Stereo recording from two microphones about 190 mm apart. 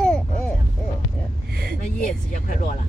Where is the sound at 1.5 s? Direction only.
55° right (ahead or behind).